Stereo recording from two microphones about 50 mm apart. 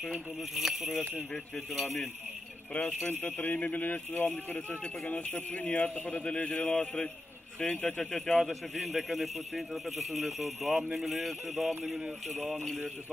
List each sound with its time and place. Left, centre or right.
0.4 s speech: centre
2.7 s speech: left
8.0 s speech: centre
8.5 s speech: centre